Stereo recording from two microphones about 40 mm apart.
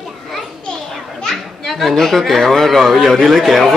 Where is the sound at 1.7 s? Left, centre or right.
Centre.